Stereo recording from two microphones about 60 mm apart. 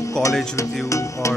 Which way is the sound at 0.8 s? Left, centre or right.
Left.